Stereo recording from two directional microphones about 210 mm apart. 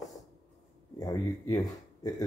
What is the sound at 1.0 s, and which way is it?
Speech, 15° left (ahead or behind).